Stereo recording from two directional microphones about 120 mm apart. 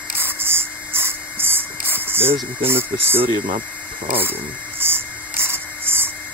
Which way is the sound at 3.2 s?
45° right (ahead or behind).